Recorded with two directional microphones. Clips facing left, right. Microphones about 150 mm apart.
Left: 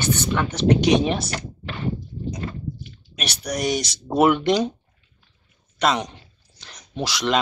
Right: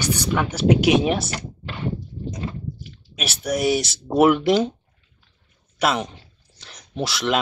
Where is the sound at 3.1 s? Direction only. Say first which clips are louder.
Right 3 dB; 5° right (ahead or behind).